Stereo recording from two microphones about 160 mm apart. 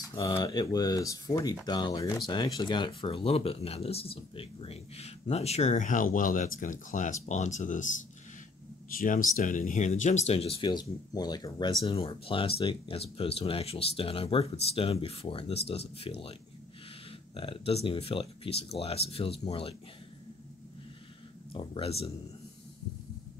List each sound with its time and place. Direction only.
0.1 s speech: 25° left (ahead or behind); by 7.9 s 50° left (ahead or behind)
8.9 s speech: 55° left (ahead or behind); by 16.3 s 35° left (ahead or behind)
17.4 s speech: 35° left (ahead or behind)
21.5 s speech: 35° left (ahead or behind)